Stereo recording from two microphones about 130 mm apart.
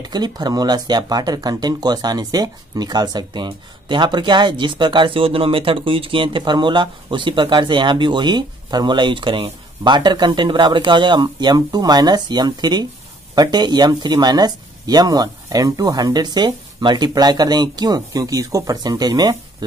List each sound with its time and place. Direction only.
0.0 s speech: 30° right (ahead or behind)